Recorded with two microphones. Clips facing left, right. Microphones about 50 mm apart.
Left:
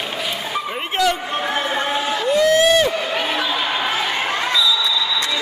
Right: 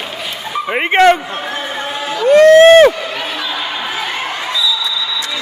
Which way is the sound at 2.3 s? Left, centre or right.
Right.